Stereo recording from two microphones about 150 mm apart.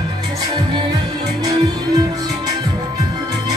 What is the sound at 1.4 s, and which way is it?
Music, 30° right (ahead or behind).